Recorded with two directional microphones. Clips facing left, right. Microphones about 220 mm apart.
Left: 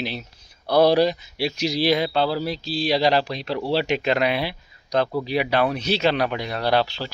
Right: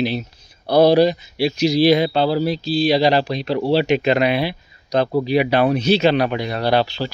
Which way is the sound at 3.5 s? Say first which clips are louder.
Right 8 dB; 25° right (ahead or behind).